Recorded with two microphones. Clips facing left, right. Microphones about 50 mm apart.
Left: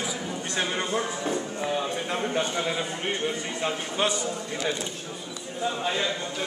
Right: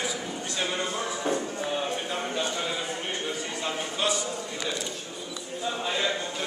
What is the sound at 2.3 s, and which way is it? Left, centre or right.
Speech, left.